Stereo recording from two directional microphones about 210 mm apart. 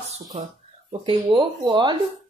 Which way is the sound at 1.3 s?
20° right (ahead or behind).